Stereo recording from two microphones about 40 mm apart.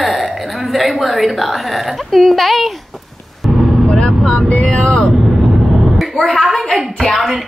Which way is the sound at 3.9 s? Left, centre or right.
Left.